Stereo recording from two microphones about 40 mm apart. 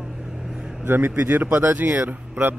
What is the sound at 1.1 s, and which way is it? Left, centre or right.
Speech, right.